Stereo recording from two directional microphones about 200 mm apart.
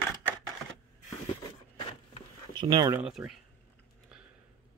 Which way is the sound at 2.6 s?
20° right (ahead or behind).